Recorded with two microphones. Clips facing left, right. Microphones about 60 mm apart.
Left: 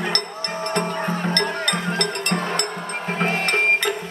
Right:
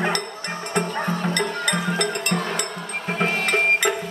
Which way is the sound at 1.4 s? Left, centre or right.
Centre.